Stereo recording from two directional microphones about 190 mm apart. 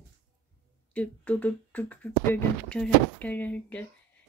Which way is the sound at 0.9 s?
10° left (ahead or behind).